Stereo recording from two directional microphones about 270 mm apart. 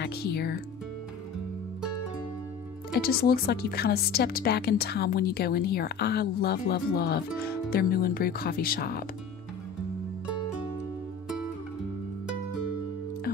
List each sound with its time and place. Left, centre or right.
0.0 s speech: left
2.9 s speech: left